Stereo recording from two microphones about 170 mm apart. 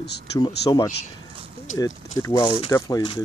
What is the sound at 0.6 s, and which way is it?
Speech, 20° left (ahead or behind).